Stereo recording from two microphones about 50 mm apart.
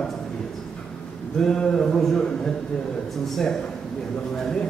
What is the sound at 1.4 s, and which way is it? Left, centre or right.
Speech, centre.